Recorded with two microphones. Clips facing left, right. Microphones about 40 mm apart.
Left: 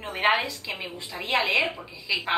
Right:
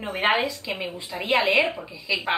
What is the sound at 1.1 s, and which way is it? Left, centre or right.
Speech, right.